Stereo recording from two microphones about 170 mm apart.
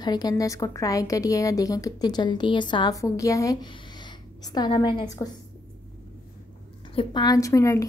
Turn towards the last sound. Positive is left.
turn(degrees=15)  # may be behind; listen again after turning